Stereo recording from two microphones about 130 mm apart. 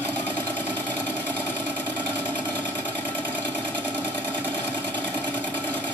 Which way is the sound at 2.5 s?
10° left (ahead or behind).